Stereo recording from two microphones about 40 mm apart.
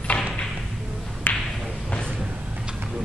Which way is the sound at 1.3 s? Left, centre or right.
Left.